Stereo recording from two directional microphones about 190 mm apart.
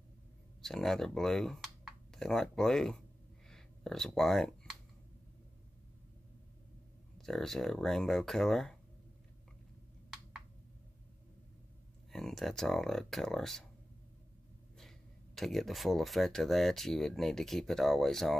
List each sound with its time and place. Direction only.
0.6 s speech: centre (ahead or behind)
3.4 s a sound: centre (ahead or behind)
7.2 s speech: centre (ahead or behind)
12.1 s speech: centre (ahead or behind)
14.8 s speech: centre (ahead or behind)